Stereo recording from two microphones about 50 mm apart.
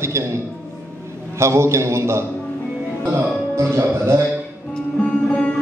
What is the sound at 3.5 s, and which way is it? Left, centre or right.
Music, right.